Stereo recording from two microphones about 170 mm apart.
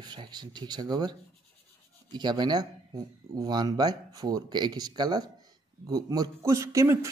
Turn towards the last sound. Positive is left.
turn(degrees=-15)  # may be behind; listen again after turning